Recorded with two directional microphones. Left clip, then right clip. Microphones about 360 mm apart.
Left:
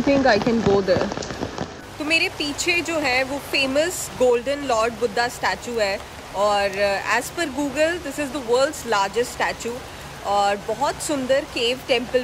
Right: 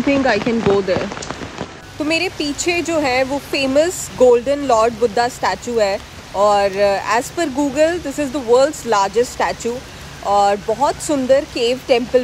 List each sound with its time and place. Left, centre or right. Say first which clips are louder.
0.5 s speech: right 3 dB; left
2.0 s speech: right 2 dB; centre